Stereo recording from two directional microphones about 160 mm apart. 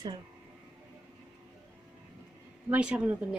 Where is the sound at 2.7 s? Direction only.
10° right (ahead or behind).